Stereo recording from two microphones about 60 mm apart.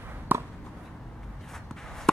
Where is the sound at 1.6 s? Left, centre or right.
Centre.